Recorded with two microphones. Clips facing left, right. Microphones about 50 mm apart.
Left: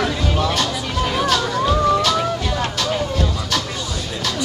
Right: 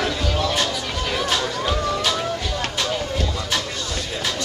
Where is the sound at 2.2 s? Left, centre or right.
Centre.